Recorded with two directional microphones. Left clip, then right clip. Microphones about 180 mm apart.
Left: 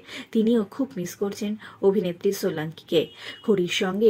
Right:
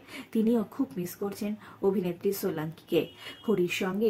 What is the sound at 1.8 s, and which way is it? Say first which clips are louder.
Speech: left 7 dB; 10° left (ahead or behind).